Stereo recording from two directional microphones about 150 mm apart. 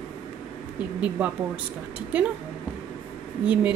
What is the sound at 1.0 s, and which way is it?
Speech, 10° right (ahead or behind).